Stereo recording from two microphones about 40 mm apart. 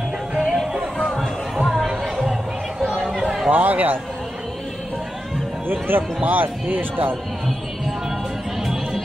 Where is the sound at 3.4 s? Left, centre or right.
Right.